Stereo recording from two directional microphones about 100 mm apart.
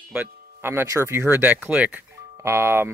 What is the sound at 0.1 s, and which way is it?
Speech, 20° right (ahead or behind).